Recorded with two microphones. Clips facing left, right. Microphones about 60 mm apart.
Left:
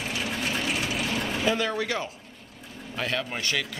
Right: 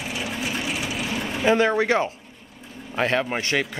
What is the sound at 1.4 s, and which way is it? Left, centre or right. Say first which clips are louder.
Speech: right 9 dB; right.